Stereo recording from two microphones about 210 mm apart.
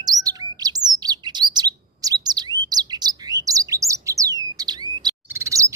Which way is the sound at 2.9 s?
15° right (ahead or behind).